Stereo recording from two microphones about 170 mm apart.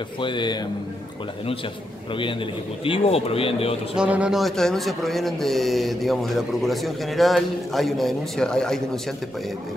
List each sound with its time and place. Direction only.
0.2 s a man's voice: 25° left (ahead or behind)
2.8 s speech: 35° left (ahead or behind)
3.9 s a man's voice: 5° right (ahead or behind)